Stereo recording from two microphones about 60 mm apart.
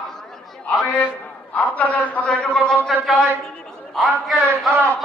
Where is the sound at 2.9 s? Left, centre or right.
Centre.